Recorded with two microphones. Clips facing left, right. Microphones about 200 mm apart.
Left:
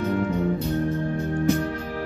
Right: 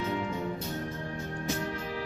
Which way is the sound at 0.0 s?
55° left (ahead or behind).